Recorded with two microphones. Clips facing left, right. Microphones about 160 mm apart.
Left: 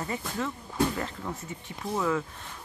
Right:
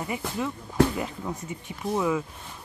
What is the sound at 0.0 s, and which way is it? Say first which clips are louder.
Speech: right 2 dB; 15° right (ahead or behind).